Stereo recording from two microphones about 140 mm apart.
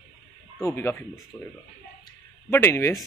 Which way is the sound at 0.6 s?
20° left (ahead or behind).